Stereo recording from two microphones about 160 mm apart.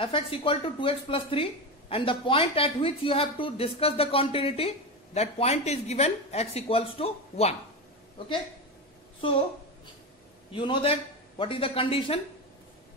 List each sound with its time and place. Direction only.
0.0 s speech: 35° left (ahead or behind)
10.5 s speech: 30° left (ahead or behind)